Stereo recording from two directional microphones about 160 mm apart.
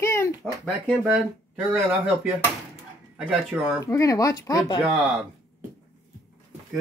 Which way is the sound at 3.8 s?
20° left (ahead or behind).